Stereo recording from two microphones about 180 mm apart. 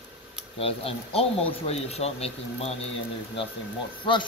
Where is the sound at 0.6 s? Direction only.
30° left (ahead or behind).